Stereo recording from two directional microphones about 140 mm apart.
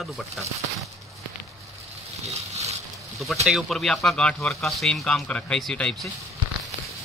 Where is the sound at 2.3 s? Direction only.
50° right (ahead or behind).